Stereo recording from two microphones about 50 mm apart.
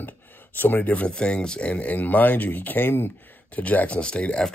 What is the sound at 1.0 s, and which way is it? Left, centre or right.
Speech, centre.